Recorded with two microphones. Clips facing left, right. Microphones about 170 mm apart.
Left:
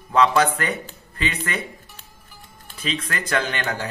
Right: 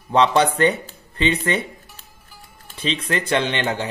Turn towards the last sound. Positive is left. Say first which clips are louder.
# right 3 dB
turn(degrees=-20)  # may be behind; listen again after turning